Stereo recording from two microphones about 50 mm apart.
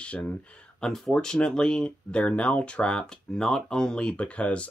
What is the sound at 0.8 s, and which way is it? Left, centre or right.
Speech, centre.